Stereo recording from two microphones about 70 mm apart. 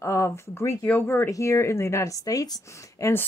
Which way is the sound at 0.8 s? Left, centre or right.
Left.